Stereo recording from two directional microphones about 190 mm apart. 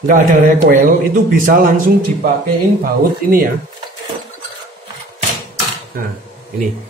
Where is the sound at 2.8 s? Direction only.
50° right (ahead or behind).